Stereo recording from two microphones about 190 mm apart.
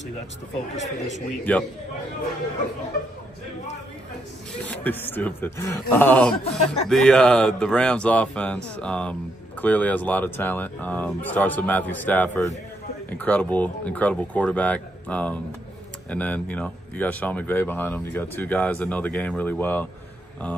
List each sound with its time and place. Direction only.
0.8 s a man's voice: 70° left (ahead or behind)
1.4 s speech: 10° left (ahead or behind)
4.6 s speech: 10° left (ahead or behind)